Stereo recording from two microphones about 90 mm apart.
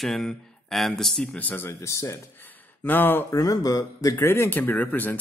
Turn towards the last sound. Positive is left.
turn(degrees=20)  # may be behind; listen again after turning